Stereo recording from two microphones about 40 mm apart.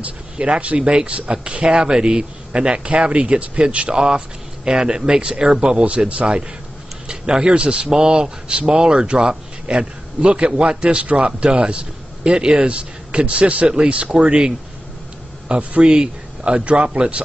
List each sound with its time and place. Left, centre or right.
0.4 s speech: right
15.8 s speech: right